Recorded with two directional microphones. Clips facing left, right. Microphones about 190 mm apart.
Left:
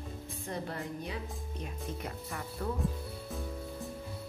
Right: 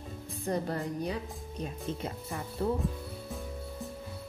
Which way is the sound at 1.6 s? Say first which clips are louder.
Right 5 dB; 30° right (ahead or behind).